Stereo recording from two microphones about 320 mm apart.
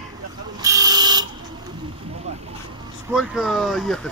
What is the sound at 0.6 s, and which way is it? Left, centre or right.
Vehicle, centre.